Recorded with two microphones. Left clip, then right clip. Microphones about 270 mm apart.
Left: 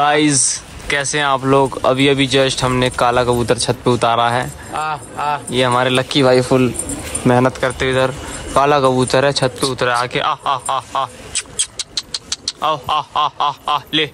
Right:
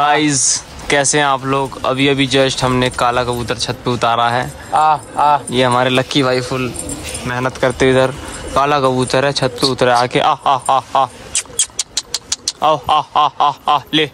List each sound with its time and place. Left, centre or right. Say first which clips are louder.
0.0 s speech: right 1 dB; centre
4.7 s speech: right 9 dB; right
5.5 s speech: right 1 dB; centre
7.6 s speech: right 3 dB; centre